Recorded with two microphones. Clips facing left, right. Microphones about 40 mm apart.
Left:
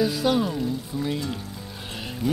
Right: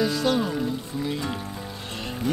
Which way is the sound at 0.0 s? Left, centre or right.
Centre.